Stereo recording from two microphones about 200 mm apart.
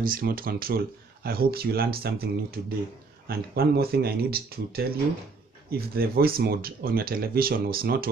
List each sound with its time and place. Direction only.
0.0 s speech: 45° right (ahead or behind)